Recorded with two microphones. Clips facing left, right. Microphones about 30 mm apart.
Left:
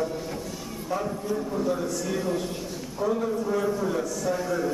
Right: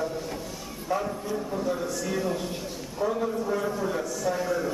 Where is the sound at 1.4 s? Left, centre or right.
Centre.